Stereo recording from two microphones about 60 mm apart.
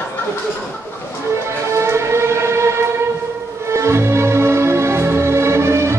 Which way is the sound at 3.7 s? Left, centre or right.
Right.